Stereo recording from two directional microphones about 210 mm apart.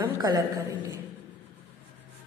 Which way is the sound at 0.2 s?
15° right (ahead or behind).